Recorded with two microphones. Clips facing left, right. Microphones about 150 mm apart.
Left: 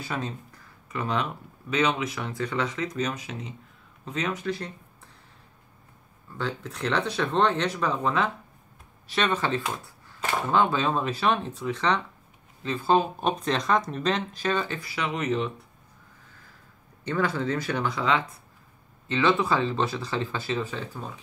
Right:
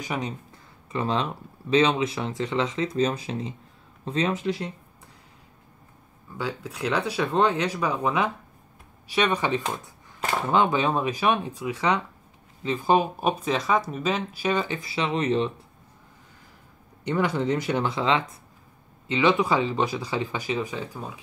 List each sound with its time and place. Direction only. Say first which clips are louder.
0.0 s speech: right 2 dB; 15° right (ahead or behind)
0.9 s speech: right 2 dB; 25° right (ahead or behind)
6.3 s speech: right 1 dB; 10° right (ahead or behind); by 15.5 s 30° right (ahead or behind)
17.0 s speech: right 2 dB; 15° right (ahead or behind)